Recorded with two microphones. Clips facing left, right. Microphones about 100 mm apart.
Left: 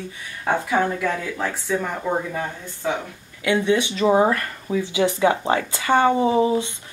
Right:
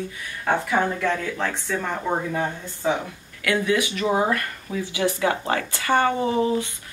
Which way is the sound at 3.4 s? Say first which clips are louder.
Left 2 dB; 25° left (ahead or behind).